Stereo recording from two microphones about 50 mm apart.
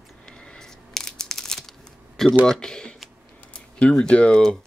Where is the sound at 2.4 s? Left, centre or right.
Centre.